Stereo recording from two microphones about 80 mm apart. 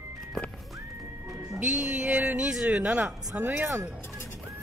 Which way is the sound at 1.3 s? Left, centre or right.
Right.